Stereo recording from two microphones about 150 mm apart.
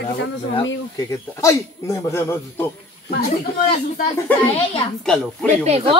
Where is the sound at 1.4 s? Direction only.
20° left (ahead or behind).